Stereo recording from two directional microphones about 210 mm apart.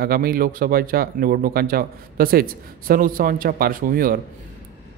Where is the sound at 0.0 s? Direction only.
45° right (ahead or behind).